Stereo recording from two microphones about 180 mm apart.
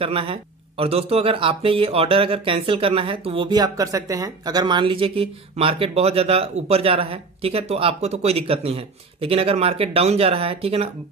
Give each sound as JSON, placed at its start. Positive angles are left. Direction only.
{"t": 0.0, "sound": "speech", "side_deg": -30}